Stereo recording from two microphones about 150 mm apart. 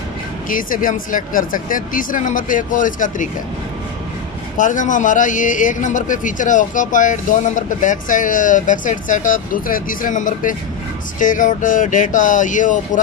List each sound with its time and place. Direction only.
0.5 s a man's voice: 65° left (ahead or behind)
4.6 s a man's voice: 60° left (ahead or behind)